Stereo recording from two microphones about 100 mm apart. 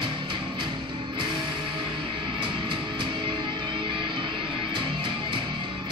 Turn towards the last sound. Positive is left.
turn(degrees=-55)  # may be behind; listen again after turning